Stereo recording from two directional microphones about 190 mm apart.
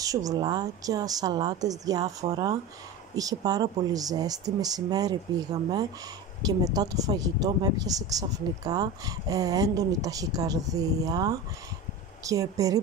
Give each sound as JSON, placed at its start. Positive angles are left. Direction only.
{"t": 0.0, "sound": "speech", "side_deg": -20}